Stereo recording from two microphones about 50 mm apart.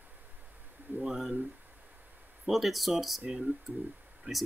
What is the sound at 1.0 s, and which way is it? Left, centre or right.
Speech, centre.